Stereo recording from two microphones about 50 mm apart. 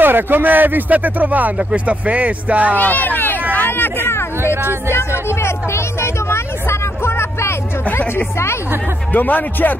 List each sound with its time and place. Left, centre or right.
0.0 s speech: right
1.6 s speech: centre
2.0 s speech: right
2.7 s a sound: left
4.8 s speech: left
9.1 s speech: left